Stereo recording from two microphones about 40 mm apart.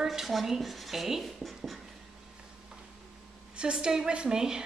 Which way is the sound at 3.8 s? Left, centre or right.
Centre.